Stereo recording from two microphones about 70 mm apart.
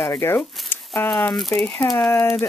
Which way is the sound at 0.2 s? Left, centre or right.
Left.